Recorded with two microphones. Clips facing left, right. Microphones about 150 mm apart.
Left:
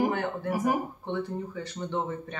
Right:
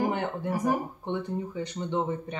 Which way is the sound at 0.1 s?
20° right (ahead or behind).